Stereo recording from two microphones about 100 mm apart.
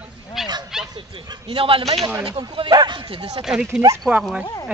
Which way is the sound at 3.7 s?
25° right (ahead or behind).